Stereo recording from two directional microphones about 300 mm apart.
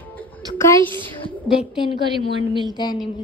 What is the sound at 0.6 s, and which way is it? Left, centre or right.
A woman's voice, centre.